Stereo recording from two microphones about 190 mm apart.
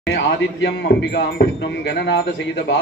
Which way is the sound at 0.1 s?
60° left (ahead or behind).